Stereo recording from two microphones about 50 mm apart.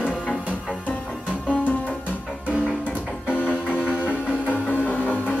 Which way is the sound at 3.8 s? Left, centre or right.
Right.